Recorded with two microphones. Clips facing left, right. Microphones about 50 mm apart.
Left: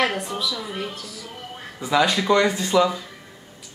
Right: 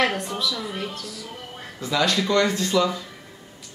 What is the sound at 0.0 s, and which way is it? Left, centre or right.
A man's voice, centre.